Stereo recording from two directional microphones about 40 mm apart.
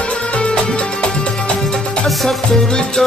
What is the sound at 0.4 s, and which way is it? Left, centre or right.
Music, left.